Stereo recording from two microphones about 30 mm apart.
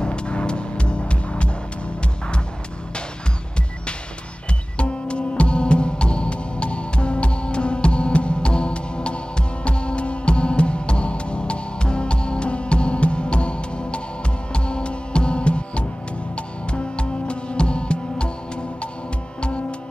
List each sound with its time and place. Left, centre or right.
0.0 s music: left
4.7 s music: left